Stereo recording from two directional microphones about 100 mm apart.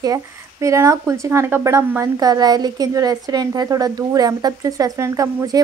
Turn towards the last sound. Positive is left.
turn(degrees=-35)  # may be behind; listen again after turning